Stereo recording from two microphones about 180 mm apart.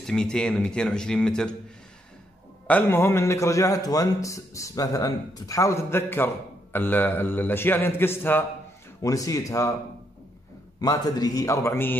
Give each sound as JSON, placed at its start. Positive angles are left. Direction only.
{"t": 0.0, "sound": "speech", "side_deg": 5}
{"t": 2.6, "sound": "a man's voice", "side_deg": 10}
{"t": 10.8, "sound": "a man's voice", "side_deg": 20}